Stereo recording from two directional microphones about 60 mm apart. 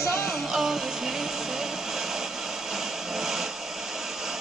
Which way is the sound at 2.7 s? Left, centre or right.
Centre.